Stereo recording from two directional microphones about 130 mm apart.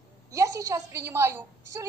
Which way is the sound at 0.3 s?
25° right (ahead or behind).